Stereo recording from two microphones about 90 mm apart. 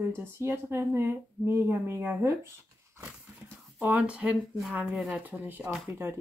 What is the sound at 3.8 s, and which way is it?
Speech, 15° right (ahead or behind).